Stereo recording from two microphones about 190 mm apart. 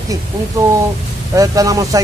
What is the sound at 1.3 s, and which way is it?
Speech, 20° right (ahead or behind).